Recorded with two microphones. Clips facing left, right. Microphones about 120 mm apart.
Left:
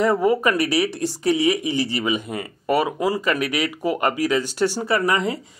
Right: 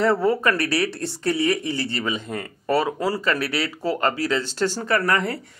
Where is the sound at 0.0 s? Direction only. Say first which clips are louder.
Left 1 dB; 15° left (ahead or behind).